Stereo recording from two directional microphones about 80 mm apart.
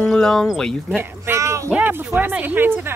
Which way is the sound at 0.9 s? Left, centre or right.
Right.